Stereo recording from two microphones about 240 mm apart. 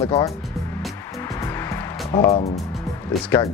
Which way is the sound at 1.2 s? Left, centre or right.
Centre.